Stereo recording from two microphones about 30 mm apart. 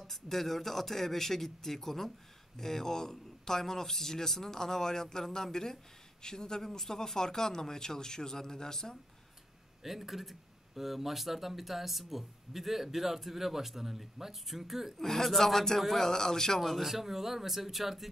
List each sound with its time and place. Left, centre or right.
0.0 s a man's voice: centre
9.8 s speech: centre
15.0 s a man's voice: centre
16.1 s a man's voice: centre
16.5 s a man's voice: centre
16.8 s speech: centre